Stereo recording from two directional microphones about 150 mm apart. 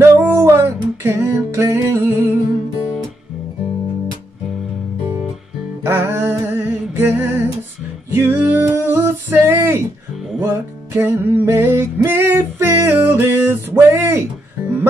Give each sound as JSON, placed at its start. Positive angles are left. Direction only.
{"t": 0.0, "sound": "music", "side_deg": -15}
{"t": 5.9, "sound": "a sound", "side_deg": -15}
{"t": 8.1, "sound": "music", "side_deg": -15}